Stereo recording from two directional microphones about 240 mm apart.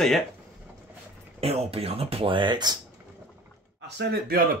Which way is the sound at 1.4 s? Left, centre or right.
Right.